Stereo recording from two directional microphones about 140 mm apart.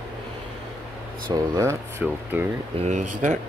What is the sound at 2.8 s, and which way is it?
Speech, 55° right (ahead or behind).